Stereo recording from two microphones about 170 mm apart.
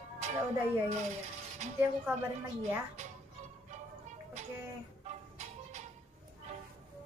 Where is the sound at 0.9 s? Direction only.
40° right (ahead or behind).